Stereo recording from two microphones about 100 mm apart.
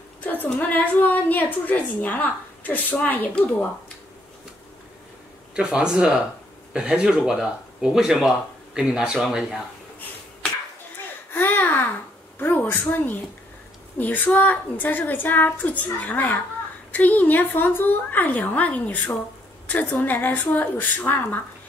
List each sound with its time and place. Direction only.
0.2 s a woman's voice: 20° left (ahead or behind)
5.5 s speech: 10° right (ahead or behind)
11.3 s a sound: 20° left (ahead or behind)
12.4 s a woman's voice: 20° left (ahead or behind)